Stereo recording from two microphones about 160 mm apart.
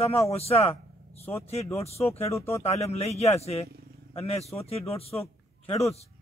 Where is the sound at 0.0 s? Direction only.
40° left (ahead or behind).